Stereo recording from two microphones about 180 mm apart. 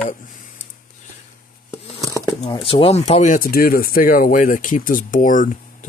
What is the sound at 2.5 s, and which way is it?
Speech, 30° left (ahead or behind).